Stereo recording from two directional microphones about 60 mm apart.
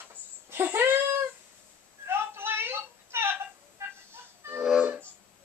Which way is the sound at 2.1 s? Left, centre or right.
Right.